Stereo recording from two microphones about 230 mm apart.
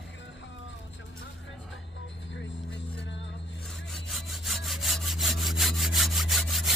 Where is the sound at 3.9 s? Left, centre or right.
Centre.